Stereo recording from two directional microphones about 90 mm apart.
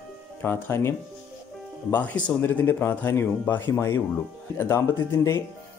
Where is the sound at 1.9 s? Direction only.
20° left (ahead or behind).